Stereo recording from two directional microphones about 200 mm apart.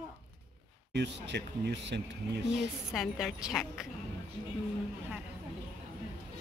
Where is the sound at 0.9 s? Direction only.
60° right (ahead or behind).